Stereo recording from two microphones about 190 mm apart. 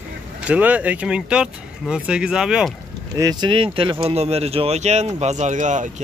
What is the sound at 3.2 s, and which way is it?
Speech, 20° right (ahead or behind).